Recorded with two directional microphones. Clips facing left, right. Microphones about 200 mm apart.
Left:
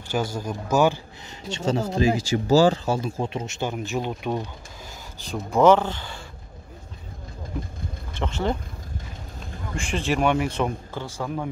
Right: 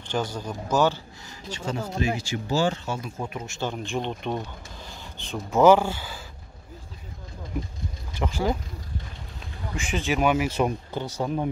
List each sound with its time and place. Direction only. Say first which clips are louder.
0.1 s a man's voice: left 2 dB; 10° left (ahead or behind)
1.5 s speech: left 6 dB; 25° left (ahead or behind)
2.2 s speech: left 10 dB; 40° left (ahead or behind); by 3.7 s 20° left (ahead or behind)
3.7 s speech: left 2 dB; 5° left (ahead or behind)
8.2 s speech: even; 5° right (ahead or behind)
9.8 s speech: left 1 dB; centre (ahead or behind)
10.6 s speech: right 1 dB; 15° right (ahead or behind)